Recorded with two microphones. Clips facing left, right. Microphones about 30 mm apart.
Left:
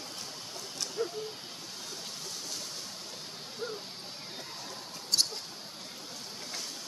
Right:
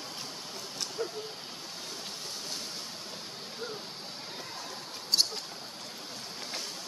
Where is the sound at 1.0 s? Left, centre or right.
Right.